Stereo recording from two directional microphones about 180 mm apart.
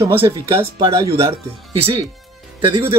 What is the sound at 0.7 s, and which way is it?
Speech, 25° right (ahead or behind).